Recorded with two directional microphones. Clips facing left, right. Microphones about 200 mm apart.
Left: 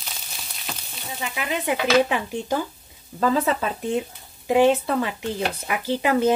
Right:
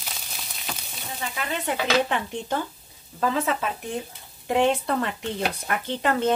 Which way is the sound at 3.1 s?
35° left (ahead or behind).